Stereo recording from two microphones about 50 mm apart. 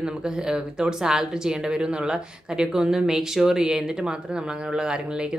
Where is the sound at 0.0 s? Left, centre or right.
Centre.